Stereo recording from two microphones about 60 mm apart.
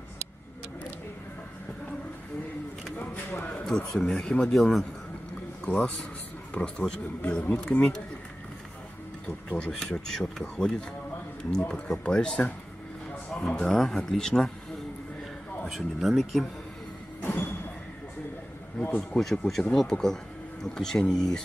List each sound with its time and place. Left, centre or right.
3.0 s a sound: left
3.6 s speech: centre
6.5 s speech: centre
9.6 s speech: centre
15.7 s speech: centre
17.2 s a sound: left
18.8 s speech: left
19.1 s speech: centre